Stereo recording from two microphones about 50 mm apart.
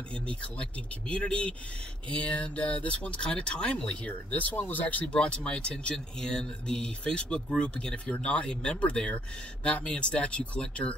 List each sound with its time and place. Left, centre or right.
0.1 s speech: left
4.1 s speech: left
5.0 s speech: centre